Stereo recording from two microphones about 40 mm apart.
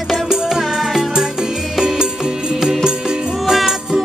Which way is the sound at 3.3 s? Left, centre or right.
Centre.